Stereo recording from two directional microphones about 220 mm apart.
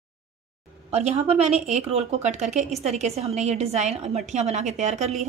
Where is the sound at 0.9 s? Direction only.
30° right (ahead or behind).